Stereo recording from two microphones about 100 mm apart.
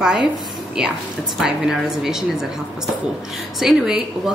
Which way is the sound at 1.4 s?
5° right (ahead or behind).